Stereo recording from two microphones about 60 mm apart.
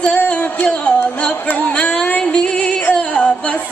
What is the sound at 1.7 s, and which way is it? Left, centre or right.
Music, centre.